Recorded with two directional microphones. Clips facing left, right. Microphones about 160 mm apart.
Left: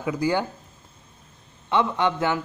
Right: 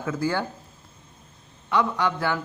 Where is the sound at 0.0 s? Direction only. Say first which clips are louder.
Left 2 dB; 15° left (ahead or behind).